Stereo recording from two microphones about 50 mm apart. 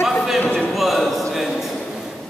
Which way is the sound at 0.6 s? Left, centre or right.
Centre.